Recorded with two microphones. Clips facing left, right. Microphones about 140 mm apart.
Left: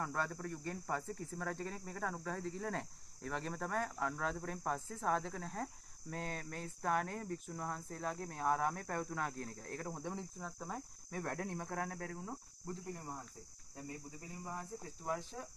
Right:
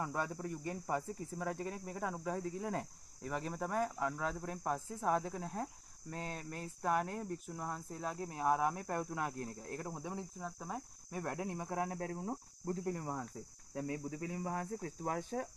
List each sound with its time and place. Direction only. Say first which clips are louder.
0.0 s speech: right 1 dB; 15° right (ahead or behind); by 12.4 s 30° right (ahead or behind)
12.8 s speech: right 7 dB; 70° right (ahead or behind)
13.7 s speech: right 9 dB; 90° right; by 14.9 s 75° right (ahead or behind)
15.0 s speech: right 3 dB; 50° right (ahead or behind)